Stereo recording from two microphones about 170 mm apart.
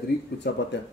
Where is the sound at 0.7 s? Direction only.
90° left.